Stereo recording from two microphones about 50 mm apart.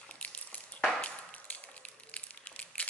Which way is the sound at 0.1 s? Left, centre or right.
Left.